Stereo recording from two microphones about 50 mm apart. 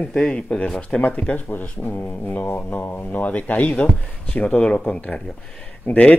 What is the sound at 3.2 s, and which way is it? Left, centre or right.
Speech, left.